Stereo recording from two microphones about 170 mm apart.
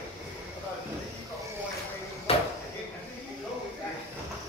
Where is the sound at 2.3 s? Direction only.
35° left (ahead or behind).